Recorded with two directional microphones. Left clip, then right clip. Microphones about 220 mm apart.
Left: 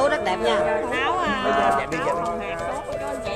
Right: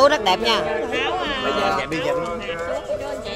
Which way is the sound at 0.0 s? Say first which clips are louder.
Right 5 dB; 45° right (ahead or behind).